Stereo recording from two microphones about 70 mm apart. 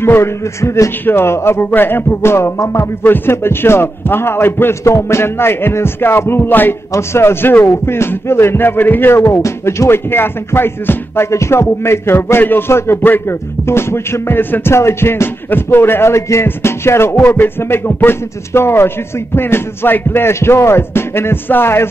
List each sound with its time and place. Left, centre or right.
0.0 s a man's voice: left
2.6 s music: left
3.0 s a man's voice: left
17.1 s a man's voice: left